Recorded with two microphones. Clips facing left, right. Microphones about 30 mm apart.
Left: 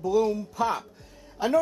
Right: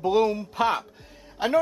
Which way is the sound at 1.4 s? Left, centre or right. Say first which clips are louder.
Right 1 dB; right.